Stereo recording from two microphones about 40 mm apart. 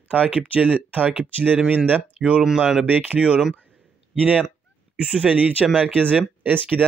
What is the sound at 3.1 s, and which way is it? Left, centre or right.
Speech, right.